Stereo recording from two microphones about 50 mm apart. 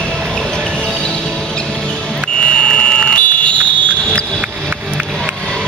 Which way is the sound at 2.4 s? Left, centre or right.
Centre.